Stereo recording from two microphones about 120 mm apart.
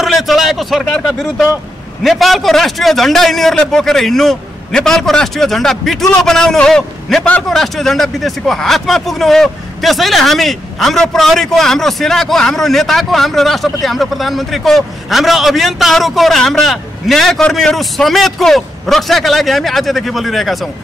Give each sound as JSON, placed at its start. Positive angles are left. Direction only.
{"t": 0.0, "sound": "a man's voice", "side_deg": 0}